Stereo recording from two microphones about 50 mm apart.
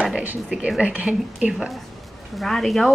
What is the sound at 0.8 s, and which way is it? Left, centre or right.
Speech, right.